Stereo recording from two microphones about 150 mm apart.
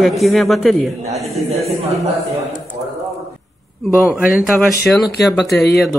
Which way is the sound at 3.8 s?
5° left (ahead or behind).